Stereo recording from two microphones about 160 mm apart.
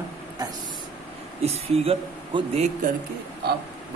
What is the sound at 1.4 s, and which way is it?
A man's voice, 40° right (ahead or behind).